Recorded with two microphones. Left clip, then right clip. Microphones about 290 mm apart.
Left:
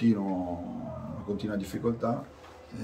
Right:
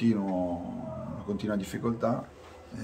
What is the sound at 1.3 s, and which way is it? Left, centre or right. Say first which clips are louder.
Speech: right 2 dB; centre.